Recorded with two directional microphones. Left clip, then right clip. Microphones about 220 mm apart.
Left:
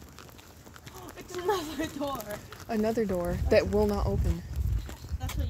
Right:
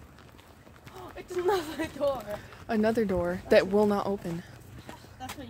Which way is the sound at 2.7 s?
15° right (ahead or behind).